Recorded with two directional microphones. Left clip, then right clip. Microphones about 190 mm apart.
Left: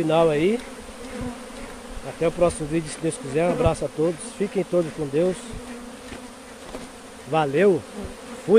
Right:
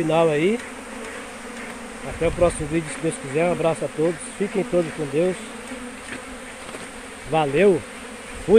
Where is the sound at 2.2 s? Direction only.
15° left (ahead or behind).